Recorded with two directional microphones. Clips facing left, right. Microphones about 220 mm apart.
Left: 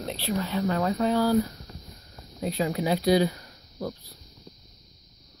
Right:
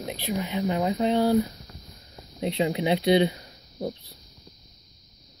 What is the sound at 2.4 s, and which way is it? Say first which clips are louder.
Speech: right 2 dB; 25° right (ahead or behind).